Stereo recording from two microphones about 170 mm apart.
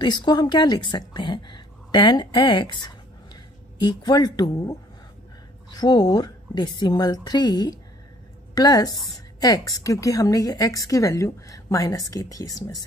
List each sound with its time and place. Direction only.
0.0 s a woman's voice: 25° left (ahead or behind)